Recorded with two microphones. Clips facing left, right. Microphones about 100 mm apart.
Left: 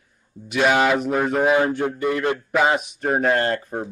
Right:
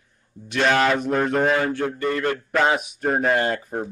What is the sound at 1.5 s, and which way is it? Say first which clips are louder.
Speech: left 3 dB; 15° left (ahead or behind).